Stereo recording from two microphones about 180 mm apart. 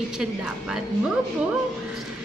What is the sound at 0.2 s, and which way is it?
Speech, 5° right (ahead or behind).